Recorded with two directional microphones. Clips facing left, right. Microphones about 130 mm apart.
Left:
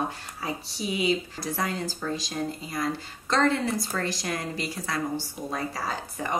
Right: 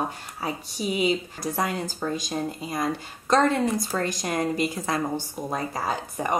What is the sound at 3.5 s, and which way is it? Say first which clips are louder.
Speech: right 3 dB; 50° right (ahead or behind).